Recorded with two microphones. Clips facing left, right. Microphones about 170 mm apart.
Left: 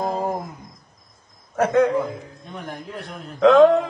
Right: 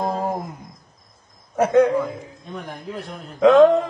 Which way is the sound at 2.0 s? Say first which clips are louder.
Right 1 dB; centre (ahead or behind).